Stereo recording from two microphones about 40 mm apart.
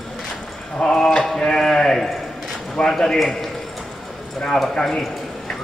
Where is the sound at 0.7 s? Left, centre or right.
Centre.